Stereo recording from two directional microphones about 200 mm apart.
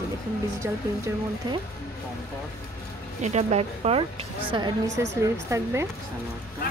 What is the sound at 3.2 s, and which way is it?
A woman's voice, 35° right (ahead or behind).